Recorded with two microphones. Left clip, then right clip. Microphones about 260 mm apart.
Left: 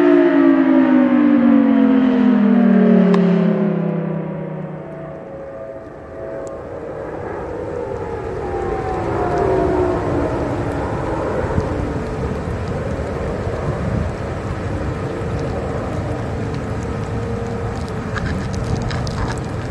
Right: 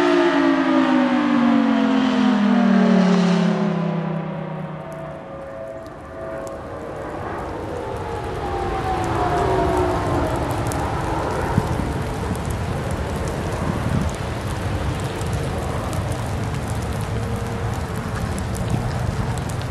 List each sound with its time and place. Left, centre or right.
0.0 s civil defense siren: centre
9.1 s rain: right